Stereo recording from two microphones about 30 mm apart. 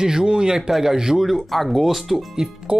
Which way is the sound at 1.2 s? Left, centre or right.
Centre.